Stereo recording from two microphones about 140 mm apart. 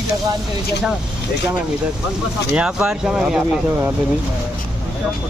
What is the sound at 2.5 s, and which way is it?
Speech, 5° right (ahead or behind).